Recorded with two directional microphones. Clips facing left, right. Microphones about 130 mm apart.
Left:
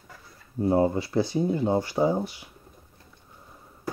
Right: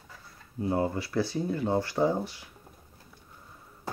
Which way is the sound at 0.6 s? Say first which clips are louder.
Left 6 dB; 25° left (ahead or behind).